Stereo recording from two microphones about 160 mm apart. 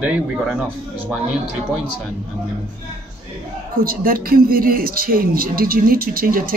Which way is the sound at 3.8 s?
65° right (ahead or behind).